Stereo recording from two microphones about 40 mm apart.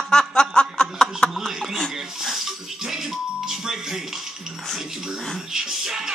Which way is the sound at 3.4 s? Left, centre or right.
Centre.